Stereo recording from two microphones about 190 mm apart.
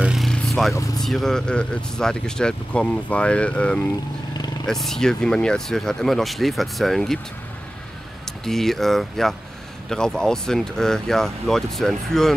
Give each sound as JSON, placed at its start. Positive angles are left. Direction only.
{"t": 0.0, "sound": "vehicle", "side_deg": 0}
{"t": 0.7, "sound": "speech", "side_deg": 15}
{"t": 1.0, "sound": "speech", "side_deg": 0}
{"t": 8.3, "sound": "speech", "side_deg": 0}